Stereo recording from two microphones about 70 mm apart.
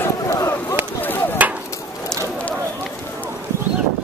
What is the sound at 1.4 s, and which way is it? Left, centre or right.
Chop, right.